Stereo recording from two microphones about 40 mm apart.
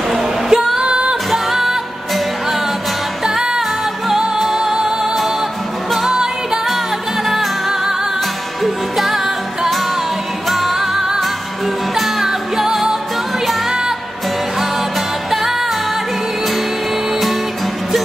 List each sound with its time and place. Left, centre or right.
0.1 s music: centre
1.3 s music: centre
3.3 s music: centre
6.0 s music: centre
7.2 s music: centre